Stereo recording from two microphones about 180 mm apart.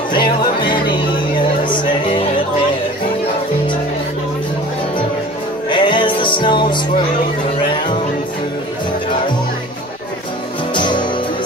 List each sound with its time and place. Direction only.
0.1 s music: 25° left (ahead or behind)
5.7 s music: 25° left (ahead or behind)
10.7 s music: 25° left (ahead or behind)